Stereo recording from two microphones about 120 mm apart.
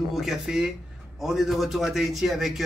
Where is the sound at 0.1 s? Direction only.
5° right (ahead or behind).